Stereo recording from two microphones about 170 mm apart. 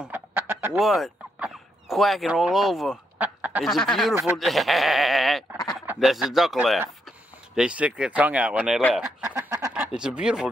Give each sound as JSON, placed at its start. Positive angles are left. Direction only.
{"t": 0.0, "sound": "chicken", "side_deg": -10}
{"t": 0.7, "sound": "speech", "side_deg": 0}
{"t": 3.6, "sound": "sheep", "side_deg": 0}
{"t": 5.9, "sound": "speech", "side_deg": 0}
{"t": 9.3, "sound": "chicken", "side_deg": -15}
{"t": 9.8, "sound": "sheep", "side_deg": -5}